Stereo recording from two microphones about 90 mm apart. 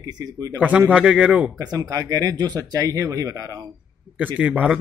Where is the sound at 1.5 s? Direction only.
45° right (ahead or behind).